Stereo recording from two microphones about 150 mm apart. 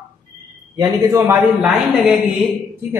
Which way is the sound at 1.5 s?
5° right (ahead or behind).